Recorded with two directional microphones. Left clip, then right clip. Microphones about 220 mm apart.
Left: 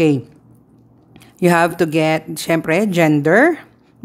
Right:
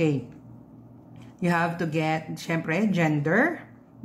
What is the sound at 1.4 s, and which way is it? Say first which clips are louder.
A woman's voice: left 12 dB; 50° left (ahead or behind).